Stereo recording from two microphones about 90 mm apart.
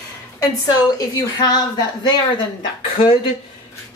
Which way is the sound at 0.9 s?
45° left (ahead or behind).